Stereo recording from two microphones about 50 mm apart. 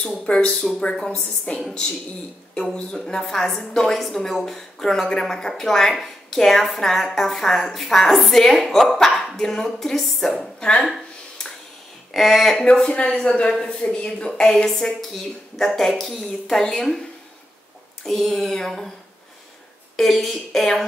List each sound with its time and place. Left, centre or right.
0.0 s a woman's voice: centre
1.5 s speech: left
2.7 s a woman's voice: centre
12.1 s speech: centre
12.9 s a woman's voice: left
18.0 s a woman's voice: centre
20.0 s a woman's voice: centre